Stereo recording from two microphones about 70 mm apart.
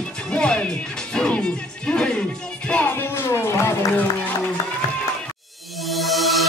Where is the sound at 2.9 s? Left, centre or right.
Left.